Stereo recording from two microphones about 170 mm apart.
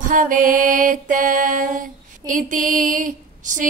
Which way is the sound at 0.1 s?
50° right (ahead or behind).